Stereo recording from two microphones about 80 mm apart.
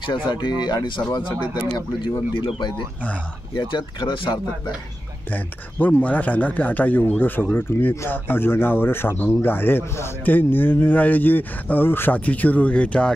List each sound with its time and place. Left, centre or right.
0.0 s speech: left
2.3 s speech: left
3.5 s speech: left
5.3 s a man's voice: left